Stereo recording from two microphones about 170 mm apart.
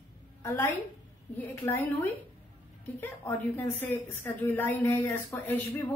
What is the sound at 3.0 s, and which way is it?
A woman's voice, 10° left (ahead or behind).